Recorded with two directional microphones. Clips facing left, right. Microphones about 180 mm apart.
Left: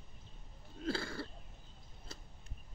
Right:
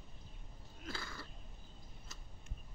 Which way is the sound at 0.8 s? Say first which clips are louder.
Left 10 dB; 30° left (ahead or behind).